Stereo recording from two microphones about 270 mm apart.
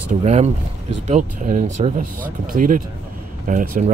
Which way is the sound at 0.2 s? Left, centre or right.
Right.